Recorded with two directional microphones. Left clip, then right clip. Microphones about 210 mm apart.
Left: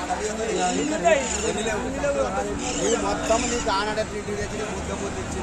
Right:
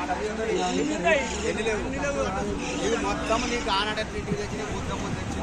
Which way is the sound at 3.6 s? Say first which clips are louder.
Left 2 dB; 45° left (ahead or behind).